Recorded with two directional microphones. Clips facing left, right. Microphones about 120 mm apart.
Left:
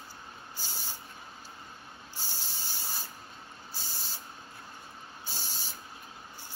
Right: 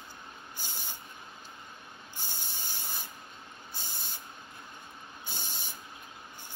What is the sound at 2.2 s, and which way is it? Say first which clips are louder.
Spray: even; 20° right (ahead or behind).